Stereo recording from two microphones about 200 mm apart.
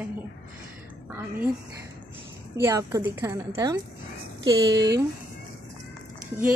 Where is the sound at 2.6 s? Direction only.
15° right (ahead or behind).